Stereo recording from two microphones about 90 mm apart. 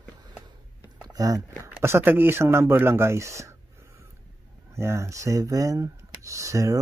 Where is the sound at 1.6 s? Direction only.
30° right (ahead or behind).